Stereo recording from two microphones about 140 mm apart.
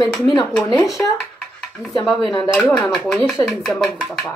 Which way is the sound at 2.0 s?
Centre (ahead or behind).